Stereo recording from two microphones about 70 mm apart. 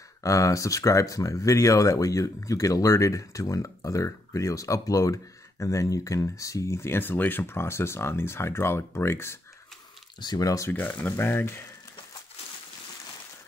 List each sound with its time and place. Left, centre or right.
0.2 s speech: left
10.2 s speech: left
10.7 s speech: left